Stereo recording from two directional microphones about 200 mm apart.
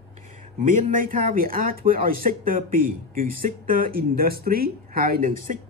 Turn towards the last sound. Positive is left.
turn(degrees=-45)  # may be behind; listen again after turning